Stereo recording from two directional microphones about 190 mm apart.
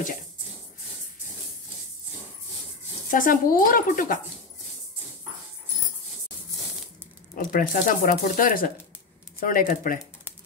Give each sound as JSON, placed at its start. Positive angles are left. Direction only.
{"t": 3.1, "sound": "speech", "side_deg": 45}
{"t": 7.3, "sound": "speech", "side_deg": 45}